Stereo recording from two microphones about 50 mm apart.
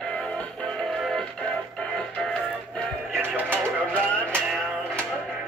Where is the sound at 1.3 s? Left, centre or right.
Centre.